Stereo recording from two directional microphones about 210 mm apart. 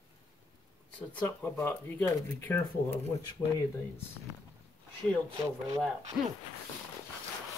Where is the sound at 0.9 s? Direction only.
10° left (ahead or behind).